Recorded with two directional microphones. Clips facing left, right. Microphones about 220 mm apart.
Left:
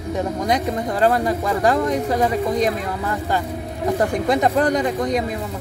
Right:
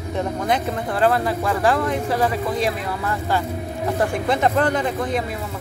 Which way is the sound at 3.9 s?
15° left (ahead or behind).